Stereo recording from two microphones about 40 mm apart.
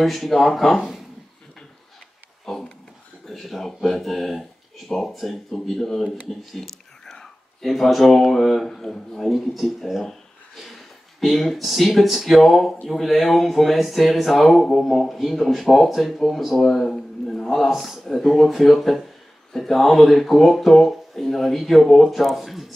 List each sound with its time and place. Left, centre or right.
0.0 s speech: centre
2.5 s a sound: centre
3.3 s speech: centre
6.5 s whispering: centre
7.6 s speech: centre
9.3 s speech: centre
9.9 s a sound: centre
11.1 s speech: centre
16.9 s a sound: centre
17.6 s speech: centre